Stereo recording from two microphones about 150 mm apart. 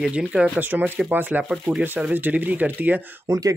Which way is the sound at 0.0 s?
5° right (ahead or behind).